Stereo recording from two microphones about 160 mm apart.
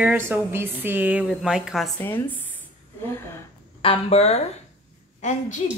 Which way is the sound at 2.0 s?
10° left (ahead or behind).